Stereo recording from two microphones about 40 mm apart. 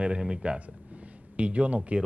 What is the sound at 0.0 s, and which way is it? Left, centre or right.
Speech, right.